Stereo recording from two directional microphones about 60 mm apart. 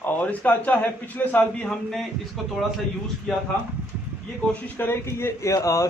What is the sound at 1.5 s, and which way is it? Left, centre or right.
Speech, centre.